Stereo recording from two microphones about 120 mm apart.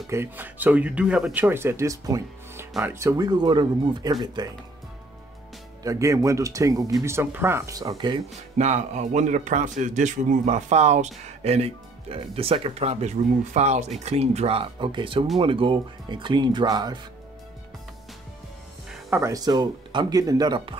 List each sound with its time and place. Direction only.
0.1 s speech: 20° right (ahead or behind); by 4.5 s 35° right (ahead or behind)
5.9 s speech: 25° right (ahead or behind)
8.5 s a man's voice: 70° right (ahead or behind)
14.0 s speech: 60° right (ahead or behind); by 17.0 s 35° right (ahead or behind)
19.0 s speech: 25° right (ahead or behind); by 20.7 s 40° right (ahead or behind)